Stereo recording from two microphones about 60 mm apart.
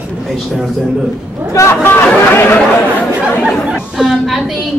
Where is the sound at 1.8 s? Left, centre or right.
Left.